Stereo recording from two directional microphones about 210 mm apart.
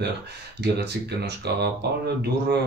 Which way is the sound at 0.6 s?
50° right (ahead or behind).